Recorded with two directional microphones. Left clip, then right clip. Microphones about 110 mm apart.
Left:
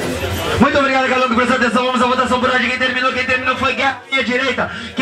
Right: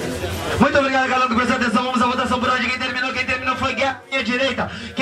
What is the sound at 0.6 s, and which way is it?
A man's voice, 35° right (ahead or behind).